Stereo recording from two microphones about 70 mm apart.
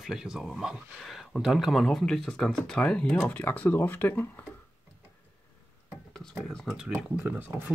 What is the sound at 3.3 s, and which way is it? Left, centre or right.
Speech, left.